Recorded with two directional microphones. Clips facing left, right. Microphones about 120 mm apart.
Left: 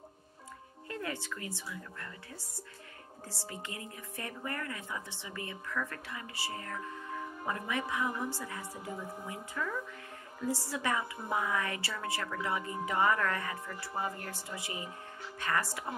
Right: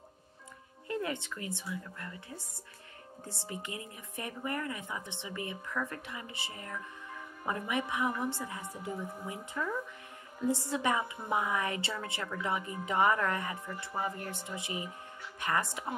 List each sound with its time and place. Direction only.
0.8 s a woman's voice: 20° right (ahead or behind)